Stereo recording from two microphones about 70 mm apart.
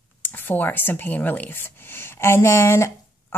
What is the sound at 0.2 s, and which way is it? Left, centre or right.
Speech, left.